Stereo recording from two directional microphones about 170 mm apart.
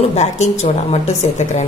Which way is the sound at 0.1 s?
40° left (ahead or behind).